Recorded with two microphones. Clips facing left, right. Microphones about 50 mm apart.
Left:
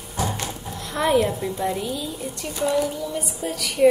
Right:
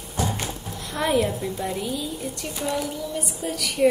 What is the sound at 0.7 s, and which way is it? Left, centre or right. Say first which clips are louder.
A child's voice: left 3 dB; centre.